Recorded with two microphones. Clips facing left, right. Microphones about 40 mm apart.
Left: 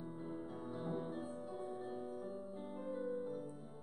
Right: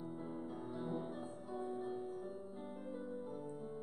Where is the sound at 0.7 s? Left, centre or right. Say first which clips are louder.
Left 1 dB; centre.